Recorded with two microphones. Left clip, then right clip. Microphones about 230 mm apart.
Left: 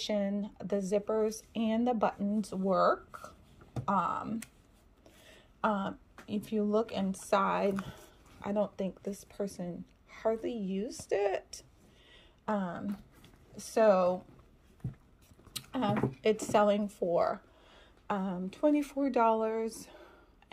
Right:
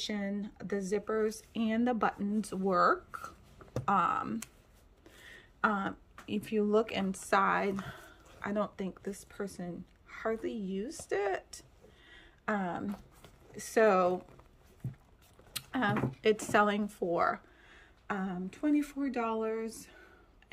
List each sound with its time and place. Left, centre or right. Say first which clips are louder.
0.4 s a woman's voice: left 3 dB; centre
2.5 s speech: even; right
3.7 s a sound: right 2 dB; centre
5.0 s speech: right 4 dB; centre
8.5 s a woman's voice: left 2 dB; centre
12.1 s a sound: even; centre
13.6 s speech: left 1 dB; centre
15.5 s speech: right 1 dB; centre